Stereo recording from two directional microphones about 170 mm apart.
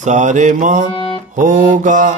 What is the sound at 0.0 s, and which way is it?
Mantra, 45° right (ahead or behind).